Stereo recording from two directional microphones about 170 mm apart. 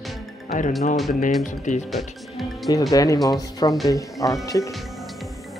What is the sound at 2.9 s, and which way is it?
Speech, 20° left (ahead or behind).